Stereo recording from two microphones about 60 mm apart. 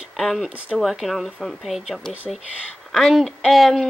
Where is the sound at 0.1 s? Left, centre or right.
Centre.